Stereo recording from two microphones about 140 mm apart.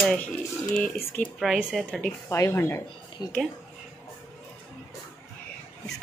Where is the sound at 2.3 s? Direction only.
20° left (ahead or behind).